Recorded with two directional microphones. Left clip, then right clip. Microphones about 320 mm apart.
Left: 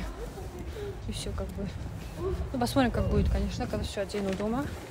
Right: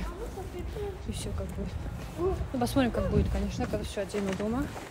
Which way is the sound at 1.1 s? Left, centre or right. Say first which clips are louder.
Left 1 dB; centre.